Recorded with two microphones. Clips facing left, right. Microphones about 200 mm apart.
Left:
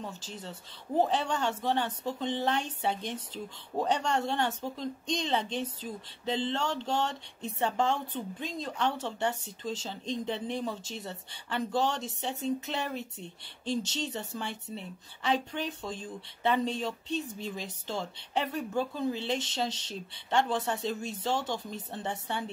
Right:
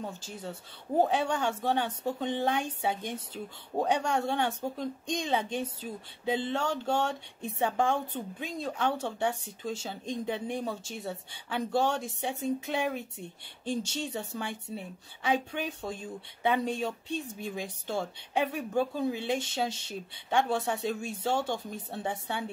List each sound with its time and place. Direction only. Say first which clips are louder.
0.2 s speech: right 2 dB; 10° right (ahead or behind)